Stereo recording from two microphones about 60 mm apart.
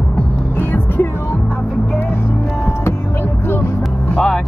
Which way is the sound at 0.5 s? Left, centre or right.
Left.